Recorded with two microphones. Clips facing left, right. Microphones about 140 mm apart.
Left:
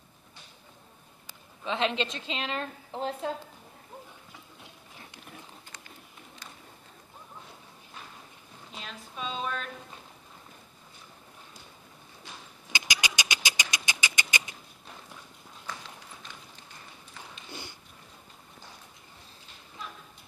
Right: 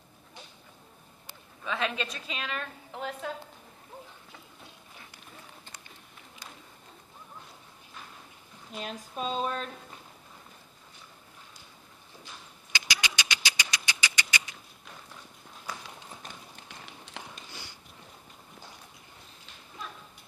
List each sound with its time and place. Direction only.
1.6 s a woman's voice: 25° left (ahead or behind)
8.7 s speech: 45° right (ahead or behind)
12.7 s vehicle: 15° left (ahead or behind)
16.6 s run: 75° right (ahead or behind)
17.5 s sniff: 50° left (ahead or behind)